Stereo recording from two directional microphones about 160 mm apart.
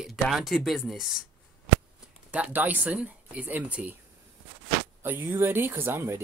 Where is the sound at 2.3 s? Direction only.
10° right (ahead or behind).